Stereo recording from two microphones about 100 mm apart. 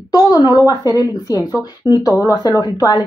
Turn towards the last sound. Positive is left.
turn(degrees=45)  # may be behind; listen again after turning